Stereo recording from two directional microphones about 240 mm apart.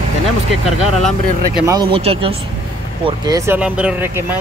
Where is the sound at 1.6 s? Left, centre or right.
Centre.